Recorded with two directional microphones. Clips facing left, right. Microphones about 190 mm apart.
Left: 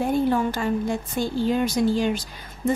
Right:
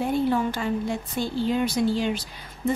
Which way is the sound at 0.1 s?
45° left (ahead or behind).